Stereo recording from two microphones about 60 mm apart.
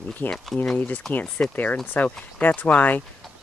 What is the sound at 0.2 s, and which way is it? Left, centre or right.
Speech, left.